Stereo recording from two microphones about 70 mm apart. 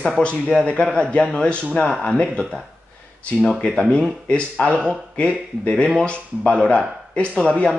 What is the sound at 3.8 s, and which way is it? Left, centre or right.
Speech, centre.